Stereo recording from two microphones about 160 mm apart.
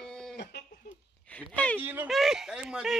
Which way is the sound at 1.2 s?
10° left (ahead or behind).